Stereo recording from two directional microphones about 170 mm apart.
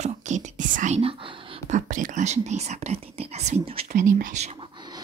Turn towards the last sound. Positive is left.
turn(degrees=-45)  # may be behind; listen again after turning